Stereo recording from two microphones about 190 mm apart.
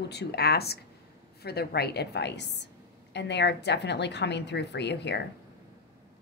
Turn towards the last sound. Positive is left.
turn(degrees=60)  # may be behind; listen again after turning